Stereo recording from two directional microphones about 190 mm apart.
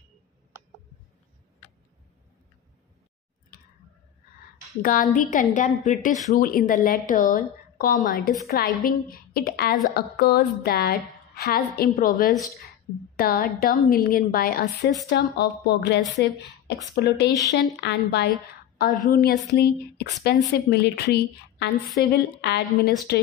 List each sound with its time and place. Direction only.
4.8 s a woman's voice: 45° left (ahead or behind); by 18.3 s 65° left (ahead or behind)
18.8 s a woman's voice: 50° left (ahead or behind)